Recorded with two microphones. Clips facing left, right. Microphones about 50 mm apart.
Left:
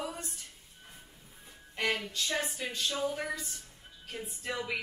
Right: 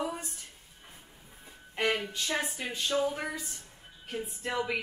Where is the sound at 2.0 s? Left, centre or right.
Right.